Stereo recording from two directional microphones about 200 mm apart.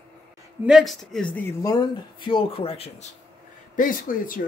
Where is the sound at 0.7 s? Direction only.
Centre (ahead or behind); by 3.1 s 30° left (ahead or behind).